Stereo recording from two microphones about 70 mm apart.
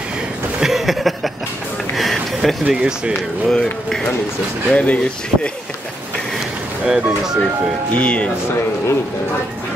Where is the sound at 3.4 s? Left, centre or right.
Centre.